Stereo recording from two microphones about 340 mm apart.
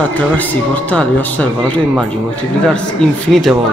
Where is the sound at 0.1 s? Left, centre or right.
Centre.